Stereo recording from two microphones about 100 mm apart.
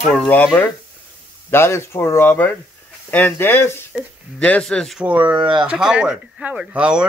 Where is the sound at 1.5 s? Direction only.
25° left (ahead or behind).